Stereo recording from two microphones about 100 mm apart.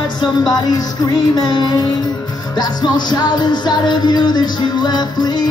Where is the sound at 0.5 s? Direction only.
45° left (ahead or behind).